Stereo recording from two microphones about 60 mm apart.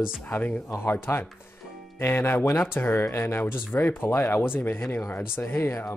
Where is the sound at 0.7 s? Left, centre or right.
Left.